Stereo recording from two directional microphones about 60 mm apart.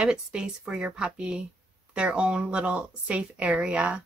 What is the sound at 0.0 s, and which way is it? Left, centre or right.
A woman's voice, centre.